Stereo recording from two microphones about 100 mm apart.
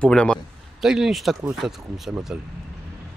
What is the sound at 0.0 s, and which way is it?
Speech, 10° left (ahead or behind).